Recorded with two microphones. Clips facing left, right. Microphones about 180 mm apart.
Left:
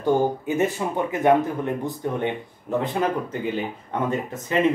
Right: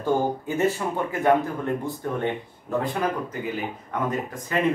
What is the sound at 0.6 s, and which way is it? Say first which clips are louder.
Speech: even; 15° left (ahead or behind).